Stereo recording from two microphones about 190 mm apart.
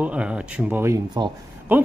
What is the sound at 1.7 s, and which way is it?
Speech, 10° right (ahead or behind).